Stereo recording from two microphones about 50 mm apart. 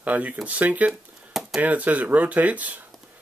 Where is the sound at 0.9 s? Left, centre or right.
Centre.